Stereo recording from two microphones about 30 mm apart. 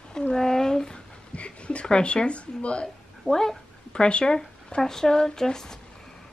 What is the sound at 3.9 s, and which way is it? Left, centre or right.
Speech, left.